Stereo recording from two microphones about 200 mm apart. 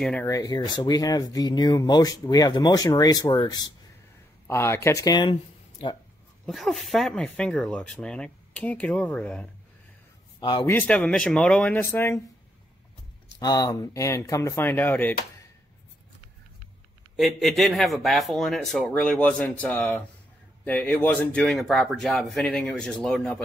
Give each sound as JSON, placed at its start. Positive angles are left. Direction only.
{"t": 0.0, "sound": "speech", "side_deg": 5}
{"t": 0.3, "sound": "speech", "side_deg": 20}
{"t": 6.4, "sound": "speech", "side_deg": 0}
{"t": 10.4, "sound": "speech", "side_deg": 20}
{"t": 13.4, "sound": "speech", "side_deg": 20}
{"t": 17.2, "sound": "speech", "side_deg": 0}